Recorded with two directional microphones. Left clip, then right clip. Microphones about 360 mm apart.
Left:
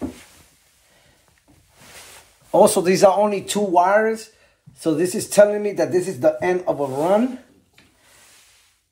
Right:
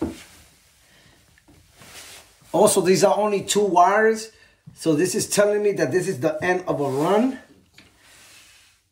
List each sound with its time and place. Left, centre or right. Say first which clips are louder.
2.5 s speech: left 2 dB; centre